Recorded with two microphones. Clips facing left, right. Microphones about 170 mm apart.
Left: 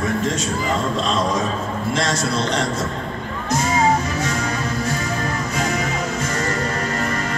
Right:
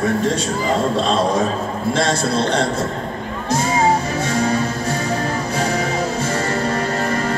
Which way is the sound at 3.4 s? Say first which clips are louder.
Right 1 dB; 30° right (ahead or behind).